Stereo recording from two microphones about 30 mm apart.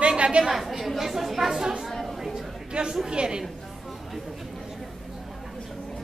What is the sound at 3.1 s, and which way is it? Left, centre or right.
Speech, right.